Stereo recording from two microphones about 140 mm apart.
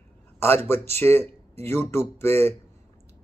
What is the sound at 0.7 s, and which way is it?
Speech, 50° right (ahead or behind).